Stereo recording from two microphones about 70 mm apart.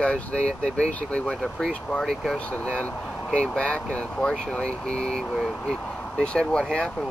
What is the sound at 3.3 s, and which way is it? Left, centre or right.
Speech, centre.